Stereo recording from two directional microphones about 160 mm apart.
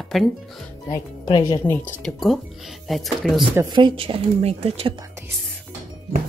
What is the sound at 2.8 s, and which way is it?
Speech, centre (ahead or behind).